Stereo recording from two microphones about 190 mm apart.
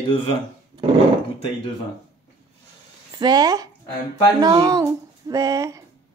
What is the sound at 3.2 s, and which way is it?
Speech, 20° right (ahead or behind).